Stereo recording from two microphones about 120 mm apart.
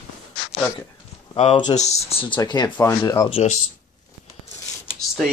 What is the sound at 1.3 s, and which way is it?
Speech, 60° left (ahead or behind).